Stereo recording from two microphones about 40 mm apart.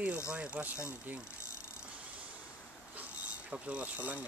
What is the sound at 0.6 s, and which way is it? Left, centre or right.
Speech, right.